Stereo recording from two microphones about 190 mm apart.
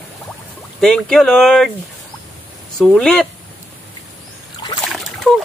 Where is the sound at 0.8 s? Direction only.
5° left (ahead or behind).